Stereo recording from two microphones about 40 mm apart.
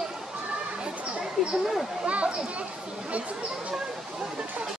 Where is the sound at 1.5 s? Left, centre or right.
Centre.